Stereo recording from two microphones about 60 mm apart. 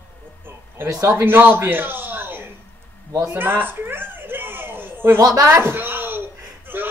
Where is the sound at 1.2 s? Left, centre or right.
Right.